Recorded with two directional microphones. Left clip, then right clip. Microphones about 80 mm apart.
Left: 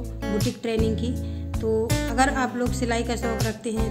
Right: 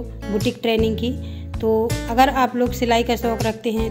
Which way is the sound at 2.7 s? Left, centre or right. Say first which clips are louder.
Right 8 dB; right.